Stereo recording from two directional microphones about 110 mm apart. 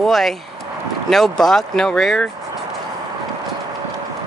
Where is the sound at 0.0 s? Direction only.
Centre (ahead or behind).